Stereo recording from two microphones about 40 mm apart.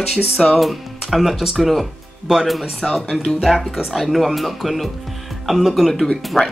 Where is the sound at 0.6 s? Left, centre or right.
Centre.